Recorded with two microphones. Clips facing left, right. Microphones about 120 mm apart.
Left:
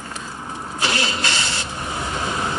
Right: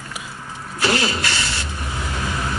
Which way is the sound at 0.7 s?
20° left (ahead or behind).